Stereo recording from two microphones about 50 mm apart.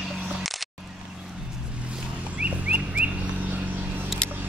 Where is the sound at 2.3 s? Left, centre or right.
Right.